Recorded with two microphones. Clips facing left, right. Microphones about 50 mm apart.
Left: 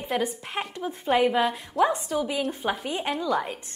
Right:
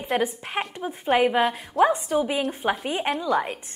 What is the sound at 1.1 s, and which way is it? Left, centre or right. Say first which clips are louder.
Speech: right 2 dB; right.